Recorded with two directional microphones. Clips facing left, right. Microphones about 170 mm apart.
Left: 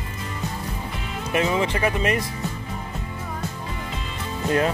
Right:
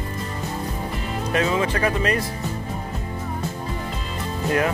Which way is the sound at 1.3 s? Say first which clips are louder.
Even; 20° left (ahead or behind).